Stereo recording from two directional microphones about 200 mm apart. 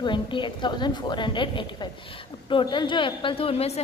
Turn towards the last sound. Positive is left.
turn(degrees=30)  # may be behind; listen again after turning